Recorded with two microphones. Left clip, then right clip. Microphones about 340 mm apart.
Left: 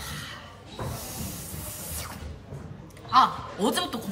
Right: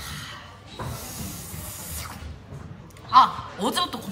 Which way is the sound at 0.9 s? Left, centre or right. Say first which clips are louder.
Right 1 dB; centre.